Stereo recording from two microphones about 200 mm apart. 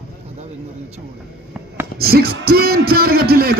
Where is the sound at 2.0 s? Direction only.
50° right (ahead or behind).